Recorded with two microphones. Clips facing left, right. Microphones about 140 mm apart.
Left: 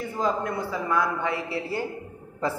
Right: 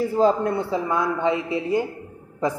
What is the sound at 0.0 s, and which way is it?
A man's voice, 30° right (ahead or behind).